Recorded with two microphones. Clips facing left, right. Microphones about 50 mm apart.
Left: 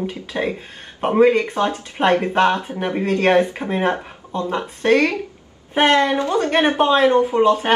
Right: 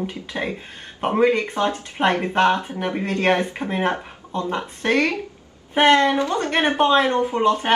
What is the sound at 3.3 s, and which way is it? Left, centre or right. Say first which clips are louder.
Speech: left 4 dB; centre.